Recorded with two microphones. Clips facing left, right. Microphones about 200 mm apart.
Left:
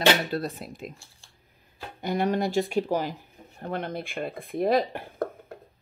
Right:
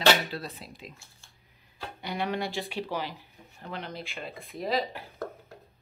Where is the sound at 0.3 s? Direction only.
50° left (ahead or behind).